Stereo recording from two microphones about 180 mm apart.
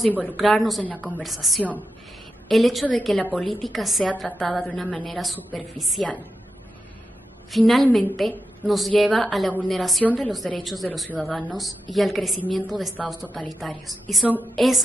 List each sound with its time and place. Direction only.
0.2 s a woman's voice: centre (ahead or behind)
7.5 s a woman's voice: centre (ahead or behind)